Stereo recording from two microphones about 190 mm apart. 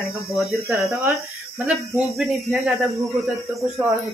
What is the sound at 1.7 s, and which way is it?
A woman's voice, 5° right (ahead or behind).